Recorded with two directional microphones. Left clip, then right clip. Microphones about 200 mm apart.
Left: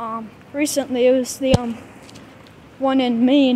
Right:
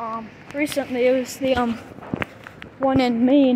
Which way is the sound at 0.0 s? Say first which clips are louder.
Left 1 dB; 40° left (ahead or behind).